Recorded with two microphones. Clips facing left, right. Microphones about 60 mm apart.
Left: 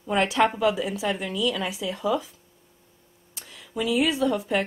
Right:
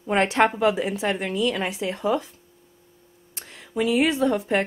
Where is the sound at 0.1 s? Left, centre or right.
Right.